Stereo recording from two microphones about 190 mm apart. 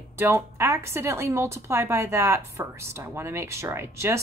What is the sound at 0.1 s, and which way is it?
Speech, 15° right (ahead or behind).